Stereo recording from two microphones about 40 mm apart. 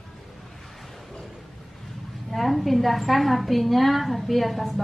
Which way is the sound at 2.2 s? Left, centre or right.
Centre.